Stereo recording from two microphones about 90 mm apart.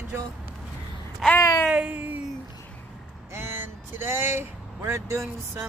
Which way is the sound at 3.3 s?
25° right (ahead or behind).